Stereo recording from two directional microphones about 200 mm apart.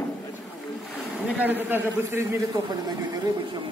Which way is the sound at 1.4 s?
10° right (ahead or behind).